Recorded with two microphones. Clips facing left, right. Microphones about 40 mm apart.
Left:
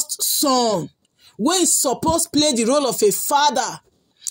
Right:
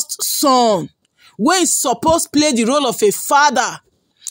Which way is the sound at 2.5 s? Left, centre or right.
Right.